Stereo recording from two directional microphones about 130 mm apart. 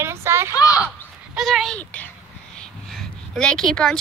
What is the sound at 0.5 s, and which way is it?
Speech, 25° left (ahead or behind).